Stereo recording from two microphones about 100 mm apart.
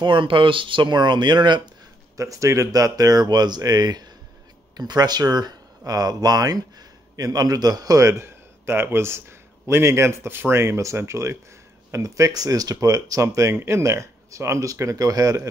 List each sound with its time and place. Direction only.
0.0 s speech: 55° right (ahead or behind)
2.1 s speech: 35° right (ahead or behind)